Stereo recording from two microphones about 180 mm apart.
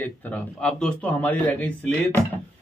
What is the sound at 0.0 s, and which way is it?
A man's voice, 5° left (ahead or behind).